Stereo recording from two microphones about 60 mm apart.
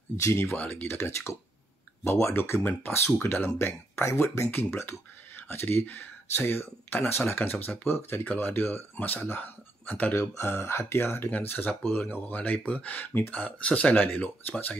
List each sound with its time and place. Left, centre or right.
0.1 s speech: left
0.7 s speech: left
2.0 s speech: left
10.3 s speech: left